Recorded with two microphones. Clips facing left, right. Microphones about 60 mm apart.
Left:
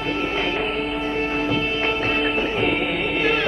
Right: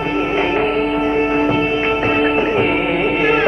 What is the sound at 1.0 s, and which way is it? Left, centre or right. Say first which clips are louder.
Music: right 8 dB; right.